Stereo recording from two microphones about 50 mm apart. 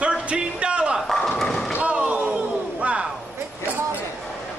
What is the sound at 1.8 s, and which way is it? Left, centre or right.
Slam, right.